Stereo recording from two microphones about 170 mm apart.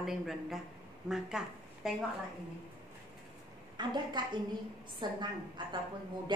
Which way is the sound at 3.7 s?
25° right (ahead or behind).